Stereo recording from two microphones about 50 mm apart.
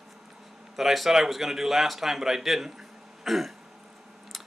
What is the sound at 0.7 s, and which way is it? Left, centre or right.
Speech, centre.